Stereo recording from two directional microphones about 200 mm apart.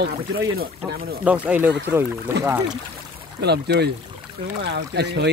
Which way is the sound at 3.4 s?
55° right (ahead or behind).